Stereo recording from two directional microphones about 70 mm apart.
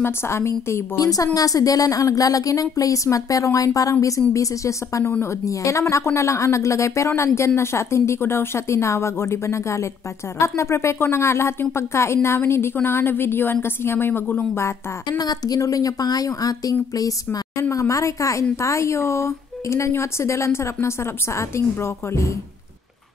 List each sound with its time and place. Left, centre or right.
0.0 s a woman's voice: left
0.9 s a woman's voice: left
15.0 s a woman's voice: left